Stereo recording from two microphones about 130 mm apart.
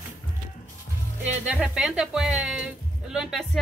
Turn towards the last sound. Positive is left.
turn(degrees=0)  # may be behind; listen again after turning